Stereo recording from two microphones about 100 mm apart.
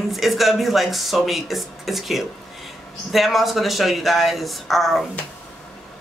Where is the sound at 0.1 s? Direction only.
Centre (ahead or behind).